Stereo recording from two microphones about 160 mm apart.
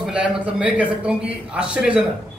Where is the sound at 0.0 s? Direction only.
5° right (ahead or behind).